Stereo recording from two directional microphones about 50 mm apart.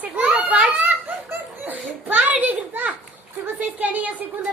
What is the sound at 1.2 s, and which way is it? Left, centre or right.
Speech, right.